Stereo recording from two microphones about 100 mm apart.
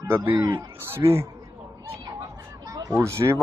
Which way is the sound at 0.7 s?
25° right (ahead or behind).